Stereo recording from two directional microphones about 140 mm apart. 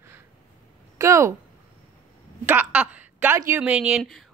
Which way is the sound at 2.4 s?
10° right (ahead or behind).